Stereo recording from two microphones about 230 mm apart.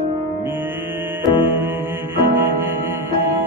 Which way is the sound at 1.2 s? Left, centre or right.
Centre.